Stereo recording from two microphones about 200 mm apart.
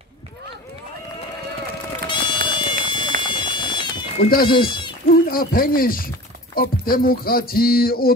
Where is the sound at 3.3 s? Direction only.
25° left (ahead or behind).